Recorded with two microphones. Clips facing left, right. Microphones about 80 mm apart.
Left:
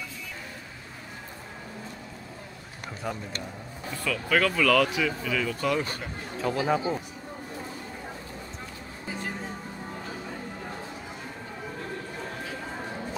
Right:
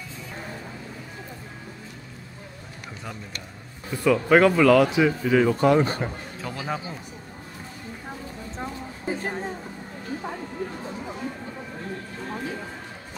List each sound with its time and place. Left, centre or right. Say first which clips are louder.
3.9 s speech: right 8 dB; right
6.4 s speech: left 6 dB; centre
8.5 s a sound: right 7 dB; right